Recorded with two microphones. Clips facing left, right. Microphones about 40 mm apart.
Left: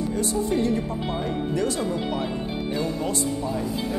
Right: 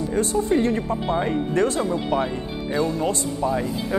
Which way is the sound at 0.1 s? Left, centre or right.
Right.